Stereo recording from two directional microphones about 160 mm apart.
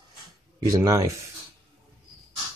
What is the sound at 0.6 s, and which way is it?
Speech, 20° right (ahead or behind).